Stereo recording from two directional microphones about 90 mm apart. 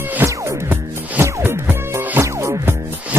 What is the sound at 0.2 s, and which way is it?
Music, 25° right (ahead or behind).